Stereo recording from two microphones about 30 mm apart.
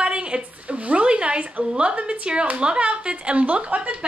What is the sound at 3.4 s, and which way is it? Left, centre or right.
Speech, right.